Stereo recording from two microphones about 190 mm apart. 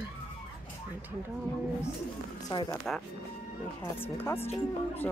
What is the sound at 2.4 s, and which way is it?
Speech, 20° left (ahead or behind).